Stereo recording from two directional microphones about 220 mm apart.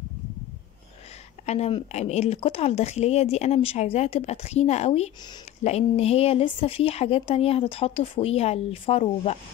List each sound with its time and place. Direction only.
1.4 s speech: 30° left (ahead or behind)